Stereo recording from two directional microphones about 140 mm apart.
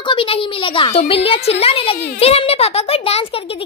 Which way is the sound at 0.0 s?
40° left (ahead or behind).